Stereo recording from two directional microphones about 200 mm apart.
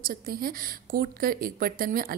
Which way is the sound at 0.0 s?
45° right (ahead or behind).